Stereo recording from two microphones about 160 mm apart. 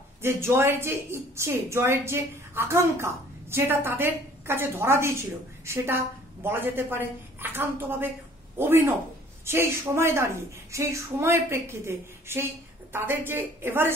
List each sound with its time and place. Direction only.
0.2 s a woman's voice: 15° right (ahead or behind)
6.4 s a woman's voice: 15° right (ahead or behind)